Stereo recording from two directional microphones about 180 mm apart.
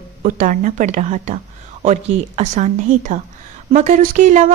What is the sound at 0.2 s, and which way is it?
A woman's voice, 45° right (ahead or behind).